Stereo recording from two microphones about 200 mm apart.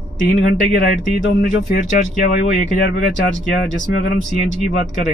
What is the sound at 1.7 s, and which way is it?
Speech, 40° left (ahead or behind).